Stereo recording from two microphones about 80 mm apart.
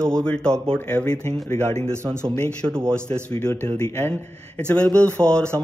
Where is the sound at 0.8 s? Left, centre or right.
Left.